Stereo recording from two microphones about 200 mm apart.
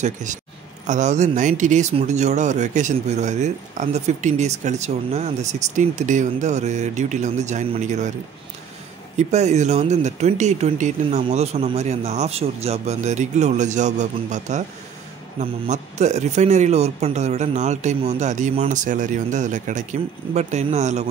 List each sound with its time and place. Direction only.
0.0 s speech: 40° right (ahead or behind)
9.1 s speech: 35° right (ahead or behind)